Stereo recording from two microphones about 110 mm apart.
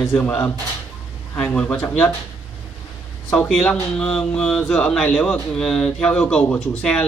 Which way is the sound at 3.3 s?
5° left (ahead or behind).